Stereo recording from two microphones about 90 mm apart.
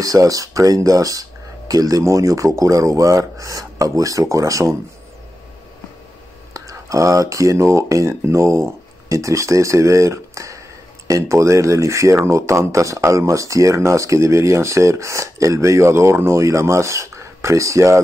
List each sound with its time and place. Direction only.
0.0 s speech: 40° right (ahead or behind)
6.5 s speech: 40° right (ahead or behind)